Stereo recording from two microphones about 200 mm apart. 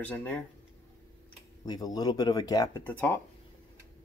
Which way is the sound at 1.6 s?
20° left (ahead or behind).